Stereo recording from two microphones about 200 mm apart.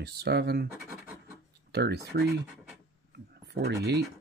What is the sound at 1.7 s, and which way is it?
Speech, 55° right (ahead or behind).